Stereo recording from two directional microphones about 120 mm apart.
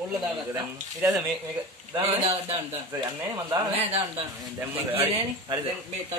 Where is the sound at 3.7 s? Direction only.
55° right (ahead or behind).